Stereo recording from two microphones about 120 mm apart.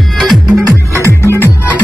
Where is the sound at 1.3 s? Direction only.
15° left (ahead or behind).